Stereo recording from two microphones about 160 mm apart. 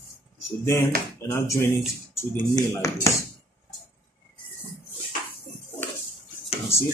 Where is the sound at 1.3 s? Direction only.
15° left (ahead or behind).